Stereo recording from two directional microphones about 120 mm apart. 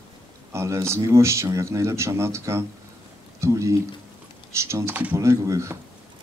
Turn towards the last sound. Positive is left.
turn(degrees=-25)  # may be behind; listen again after turning